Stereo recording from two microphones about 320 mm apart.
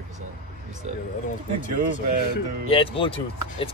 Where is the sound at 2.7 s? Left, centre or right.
Centre.